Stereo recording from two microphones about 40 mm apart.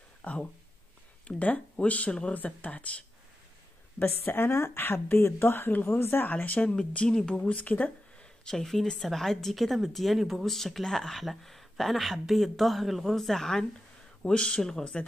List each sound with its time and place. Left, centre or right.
0.2 s speech: left
2.3 s speech: left
4.0 s a woman's voice: left
5.7 s speech: left
5.9 s a woman's voice: left
6.3 s speech: left
7.1 s speech: centre
7.4 s speech: left
8.2 s a sound: centre
8.8 s speech: centre
10.4 s speech: centre